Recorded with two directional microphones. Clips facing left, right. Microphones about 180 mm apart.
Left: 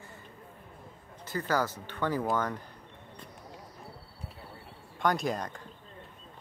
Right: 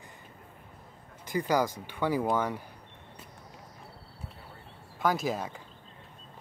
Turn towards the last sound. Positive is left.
turn(degrees=-5)  # may be behind; listen again after turning